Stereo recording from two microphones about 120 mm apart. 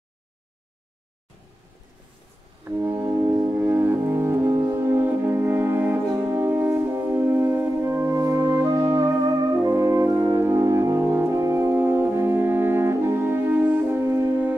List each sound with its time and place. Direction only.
2.6 s music: 15° right (ahead or behind)